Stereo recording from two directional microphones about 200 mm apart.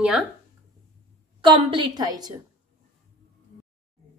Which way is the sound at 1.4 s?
25° right (ahead or behind).